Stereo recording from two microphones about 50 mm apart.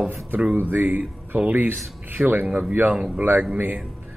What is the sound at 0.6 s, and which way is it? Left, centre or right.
A man's voice, right.